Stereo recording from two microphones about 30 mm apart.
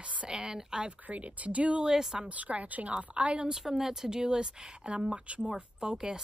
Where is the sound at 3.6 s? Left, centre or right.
Centre.